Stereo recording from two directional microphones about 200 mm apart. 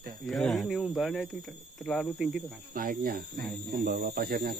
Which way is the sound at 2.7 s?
45° right (ahead or behind).